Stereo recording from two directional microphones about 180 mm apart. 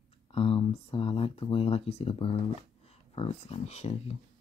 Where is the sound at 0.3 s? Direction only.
30° left (ahead or behind).